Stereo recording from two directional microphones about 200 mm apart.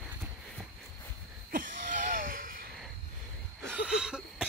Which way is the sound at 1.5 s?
45° right (ahead or behind).